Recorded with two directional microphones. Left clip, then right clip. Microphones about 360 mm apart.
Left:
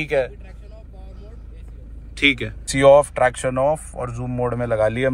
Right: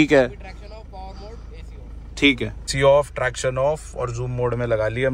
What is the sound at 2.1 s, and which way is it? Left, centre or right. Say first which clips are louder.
Speech: even; centre.